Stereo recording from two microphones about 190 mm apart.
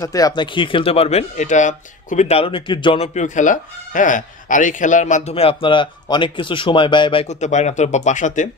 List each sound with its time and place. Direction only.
0.0 s speech: 20° left (ahead or behind); by 8.5 s 40° left (ahead or behind)